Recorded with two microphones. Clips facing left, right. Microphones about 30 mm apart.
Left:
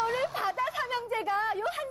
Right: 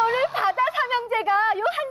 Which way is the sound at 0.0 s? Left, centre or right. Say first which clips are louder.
Right 8 dB; right.